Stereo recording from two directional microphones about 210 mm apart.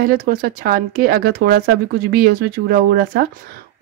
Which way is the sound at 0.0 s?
45° right (ahead or behind).